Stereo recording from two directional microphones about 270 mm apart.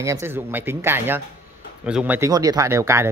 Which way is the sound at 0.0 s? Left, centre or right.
Centre.